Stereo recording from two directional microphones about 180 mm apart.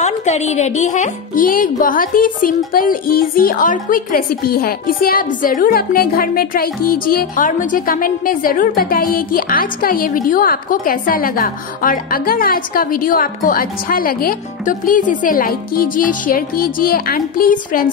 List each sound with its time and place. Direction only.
0.0 s speech: 40° left (ahead or behind)